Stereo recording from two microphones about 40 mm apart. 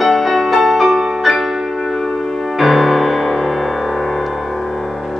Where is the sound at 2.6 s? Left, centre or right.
Centre.